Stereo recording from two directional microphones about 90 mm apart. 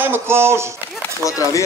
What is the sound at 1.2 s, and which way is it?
Speech, 35° left (ahead or behind).